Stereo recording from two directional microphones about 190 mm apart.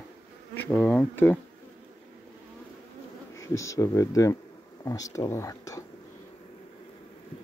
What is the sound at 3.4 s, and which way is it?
Speech, 15° left (ahead or behind).